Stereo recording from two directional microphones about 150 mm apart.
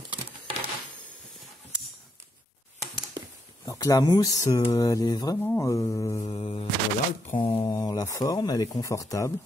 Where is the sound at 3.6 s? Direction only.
25° left (ahead or behind).